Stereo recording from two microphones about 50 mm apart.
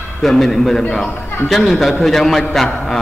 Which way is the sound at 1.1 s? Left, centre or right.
Left.